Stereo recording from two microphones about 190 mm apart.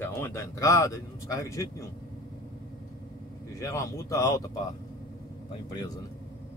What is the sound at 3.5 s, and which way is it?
Speech, 15° left (ahead or behind).